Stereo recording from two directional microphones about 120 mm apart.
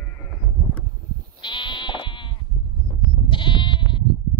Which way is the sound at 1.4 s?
45° left (ahead or behind).